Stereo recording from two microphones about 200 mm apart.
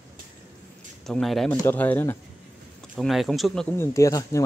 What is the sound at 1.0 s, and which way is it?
Speech, centre (ahead or behind).